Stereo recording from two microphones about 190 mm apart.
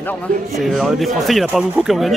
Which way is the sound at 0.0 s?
Centre (ahead or behind).